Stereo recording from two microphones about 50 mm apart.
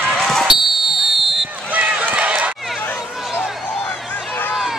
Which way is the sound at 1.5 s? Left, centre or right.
Right.